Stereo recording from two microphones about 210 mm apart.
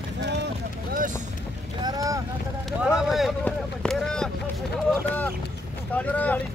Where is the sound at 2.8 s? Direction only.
Centre (ahead or behind).